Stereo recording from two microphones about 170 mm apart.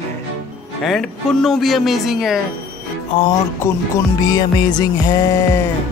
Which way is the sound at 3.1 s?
30° left (ahead or behind).